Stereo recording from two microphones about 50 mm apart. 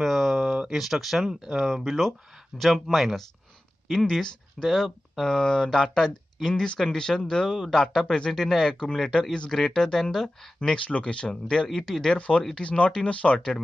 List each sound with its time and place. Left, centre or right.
0.0 s a sound: centre
0.7 s speech: centre
4.2 s speech: centre
4.6 s speech: centre
10.9 s speech: left
11.7 s speech: centre
12.2 s speech: left